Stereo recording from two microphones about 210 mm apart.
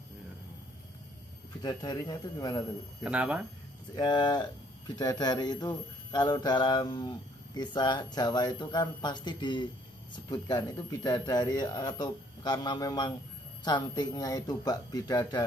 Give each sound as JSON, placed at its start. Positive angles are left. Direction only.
{"t": 1.6, "sound": "speech", "side_deg": 20}
{"t": 3.0, "sound": "speech", "side_deg": -5}
{"t": 3.9, "sound": "speech", "side_deg": 20}